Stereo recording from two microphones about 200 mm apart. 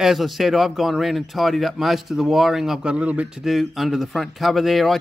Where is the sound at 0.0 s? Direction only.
Centre (ahead or behind).